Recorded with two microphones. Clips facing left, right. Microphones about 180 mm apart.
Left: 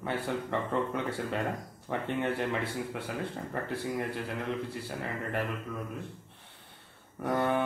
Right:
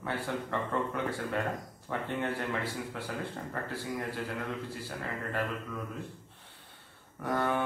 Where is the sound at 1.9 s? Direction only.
20° left (ahead or behind).